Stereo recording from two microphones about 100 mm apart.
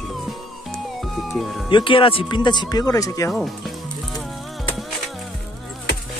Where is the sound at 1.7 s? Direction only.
55° left (ahead or behind); by 3.3 s 35° left (ahead or behind).